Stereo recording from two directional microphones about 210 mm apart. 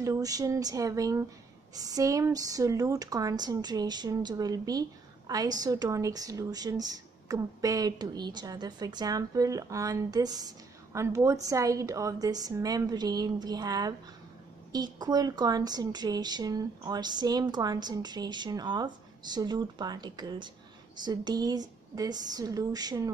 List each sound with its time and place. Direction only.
0.0 s a woman's voice: 15° right (ahead or behind)